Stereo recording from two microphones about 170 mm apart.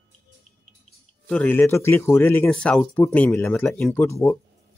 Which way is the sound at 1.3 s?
10° left (ahead or behind).